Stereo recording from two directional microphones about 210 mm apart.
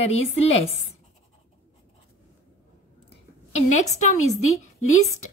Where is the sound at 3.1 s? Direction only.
30° left (ahead or behind).